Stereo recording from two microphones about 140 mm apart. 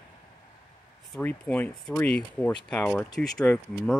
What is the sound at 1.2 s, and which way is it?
Speech, 10° left (ahead or behind).